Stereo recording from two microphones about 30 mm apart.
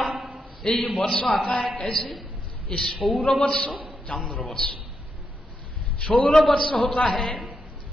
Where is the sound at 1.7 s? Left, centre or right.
Left.